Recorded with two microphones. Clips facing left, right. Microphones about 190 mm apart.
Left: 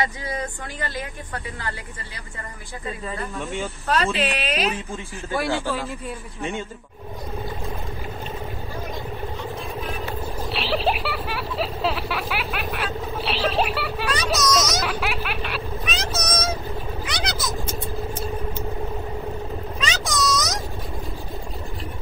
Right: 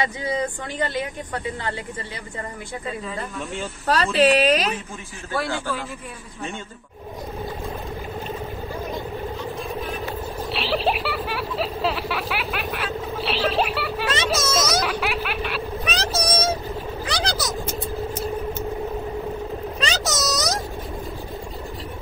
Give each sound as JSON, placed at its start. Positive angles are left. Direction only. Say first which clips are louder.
{"t": 0.0, "sound": "speech", "louder": "right 3 dB", "side_deg": -20}
{"t": 3.8, "sound": "speech", "louder": "right 5 dB", "side_deg": -35}
{"t": 5.3, "sound": "speech", "louder": "left 2 dB", "side_deg": 15}
{"t": 10.5, "sound": "speech", "louder": "even", "side_deg": 0}
{"t": 14.1, "sound": "speech", "louder": "left 2 dB", "side_deg": -25}
{"t": 14.8, "sound": "snicker", "louder": "right 2 dB", "side_deg": 0}
{"t": 15.8, "sound": "speech", "louder": "right 3 dB", "side_deg": -35}
{"t": 17.0, "sound": "a sound", "louder": "right 6 dB", "side_deg": -30}
{"t": 19.8, "sound": "a sound", "louder": "left 1 dB", "side_deg": -40}